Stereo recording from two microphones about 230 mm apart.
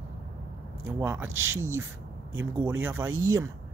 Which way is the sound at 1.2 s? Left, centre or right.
Right.